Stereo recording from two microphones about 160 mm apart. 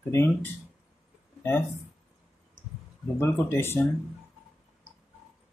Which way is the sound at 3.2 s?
15° left (ahead or behind).